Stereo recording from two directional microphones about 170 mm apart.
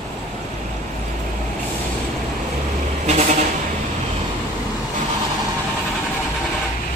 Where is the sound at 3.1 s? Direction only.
40° right (ahead or behind).